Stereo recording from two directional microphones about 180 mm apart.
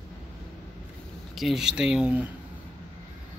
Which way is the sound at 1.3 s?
Centre (ahead or behind).